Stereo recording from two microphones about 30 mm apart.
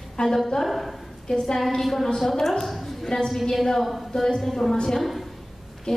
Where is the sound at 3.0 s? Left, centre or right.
Centre.